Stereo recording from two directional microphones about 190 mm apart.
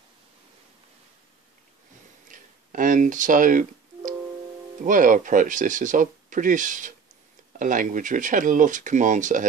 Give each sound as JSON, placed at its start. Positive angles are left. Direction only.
{"t": 2.3, "sound": "telephone", "side_deg": -45}
{"t": 4.8, "sound": "speech", "side_deg": -45}